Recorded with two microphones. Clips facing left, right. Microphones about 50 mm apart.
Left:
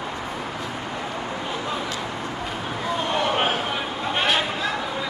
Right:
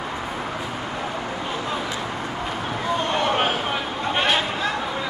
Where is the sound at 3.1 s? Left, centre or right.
Centre.